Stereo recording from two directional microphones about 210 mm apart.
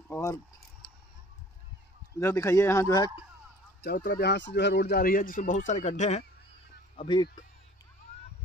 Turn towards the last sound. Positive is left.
turn(degrees=20)  # may be behind; listen again after turning